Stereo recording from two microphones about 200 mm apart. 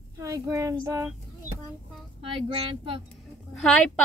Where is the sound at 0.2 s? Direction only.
15° right (ahead or behind).